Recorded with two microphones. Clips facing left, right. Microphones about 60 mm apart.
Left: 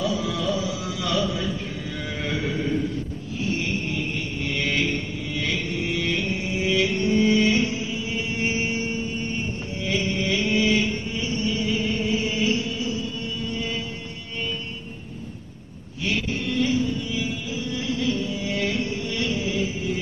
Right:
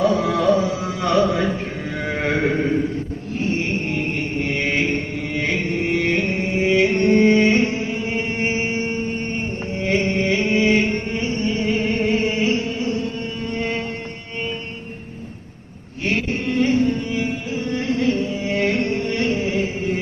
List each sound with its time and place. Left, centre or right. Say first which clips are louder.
0.0 s chant: right 8 dB; right
2.0 s a sound: right 8 dB; right
3.3 s chant: right 4 dB; right
16.0 s carnatic music: right 4 dB; right